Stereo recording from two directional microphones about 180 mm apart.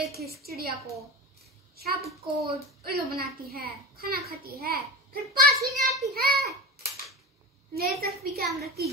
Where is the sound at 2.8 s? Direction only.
60° right (ahead or behind).